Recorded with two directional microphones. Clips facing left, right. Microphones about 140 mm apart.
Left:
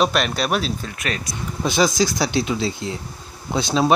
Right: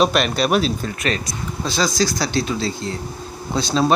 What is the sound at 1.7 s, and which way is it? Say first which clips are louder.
Speech: left 2 dB; 20° left (ahead or behind).